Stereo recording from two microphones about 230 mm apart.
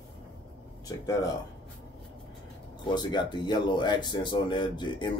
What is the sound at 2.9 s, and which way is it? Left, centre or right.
Speech, centre.